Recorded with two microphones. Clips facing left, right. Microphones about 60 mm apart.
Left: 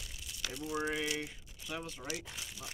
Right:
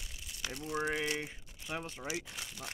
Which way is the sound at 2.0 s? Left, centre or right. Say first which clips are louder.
Right 2 dB; centre.